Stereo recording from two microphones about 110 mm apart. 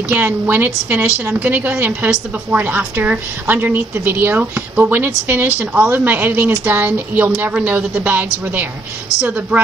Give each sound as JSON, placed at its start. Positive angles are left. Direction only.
{"t": 0.1, "sound": "a woman's voice", "side_deg": -15}